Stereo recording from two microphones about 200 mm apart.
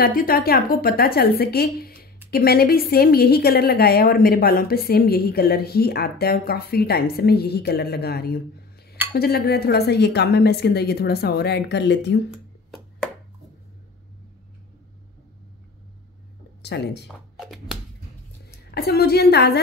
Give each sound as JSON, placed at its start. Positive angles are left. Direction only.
{"t": 0.0, "sound": "a woman's voice", "side_deg": 45}
{"t": 16.6, "sound": "speech", "side_deg": 55}
{"t": 17.4, "sound": "a sound", "side_deg": 0}
{"t": 18.7, "sound": "a woman's voice", "side_deg": 50}